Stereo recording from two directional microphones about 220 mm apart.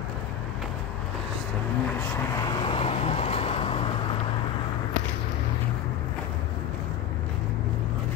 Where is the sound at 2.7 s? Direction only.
25° left (ahead or behind).